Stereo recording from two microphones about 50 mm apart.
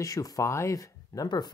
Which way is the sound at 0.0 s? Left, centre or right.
Left.